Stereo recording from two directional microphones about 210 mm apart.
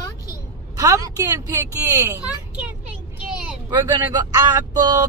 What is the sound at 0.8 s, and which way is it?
Speech, 15° right (ahead or behind).